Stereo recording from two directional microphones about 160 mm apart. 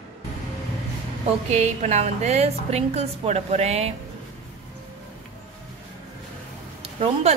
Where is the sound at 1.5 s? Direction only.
45° right (ahead or behind).